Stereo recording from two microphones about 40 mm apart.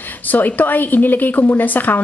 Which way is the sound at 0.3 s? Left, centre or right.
Left.